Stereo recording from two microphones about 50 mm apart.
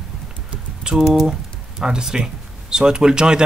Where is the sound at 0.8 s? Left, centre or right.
Centre.